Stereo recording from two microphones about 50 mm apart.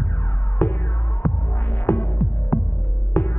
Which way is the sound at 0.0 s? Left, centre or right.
Left.